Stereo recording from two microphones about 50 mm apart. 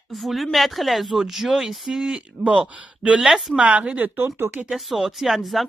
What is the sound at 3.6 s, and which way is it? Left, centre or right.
Speech, right.